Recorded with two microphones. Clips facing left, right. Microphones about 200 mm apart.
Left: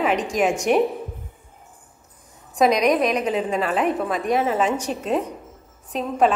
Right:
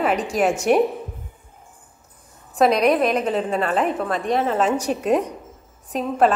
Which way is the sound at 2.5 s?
5° right (ahead or behind).